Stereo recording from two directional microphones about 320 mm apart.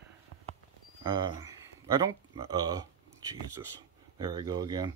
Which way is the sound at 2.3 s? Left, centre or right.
Centre.